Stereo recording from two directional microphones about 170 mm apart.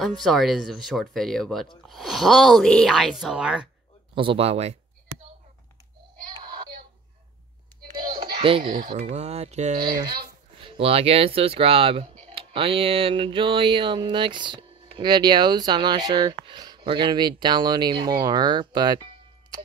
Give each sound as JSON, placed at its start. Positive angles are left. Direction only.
{"t": 0.0, "sound": "speech", "side_deg": 0}
{"t": 4.1, "sound": "speech", "side_deg": -30}
{"t": 6.4, "sound": "child singing", "side_deg": -25}
{"t": 7.8, "sound": "a sound", "side_deg": -25}
{"t": 8.9, "sound": "speech", "side_deg": -40}